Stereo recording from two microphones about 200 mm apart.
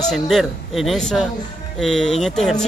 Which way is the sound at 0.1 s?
Centre (ahead or behind).